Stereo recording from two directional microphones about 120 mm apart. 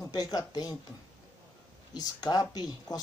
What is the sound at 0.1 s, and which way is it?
Speech, 35° left (ahead or behind).